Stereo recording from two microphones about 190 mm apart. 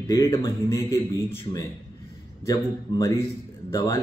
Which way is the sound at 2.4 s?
15° left (ahead or behind).